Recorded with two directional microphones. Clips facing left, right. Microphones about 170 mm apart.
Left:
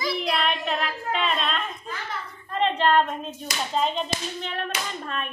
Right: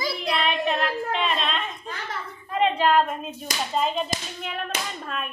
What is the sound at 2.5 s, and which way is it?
Speech, 10° right (ahead or behind).